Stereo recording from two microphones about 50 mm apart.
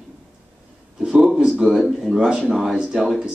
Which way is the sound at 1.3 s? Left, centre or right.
Centre.